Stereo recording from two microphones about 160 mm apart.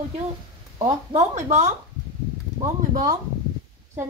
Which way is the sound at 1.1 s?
50° right (ahead or behind).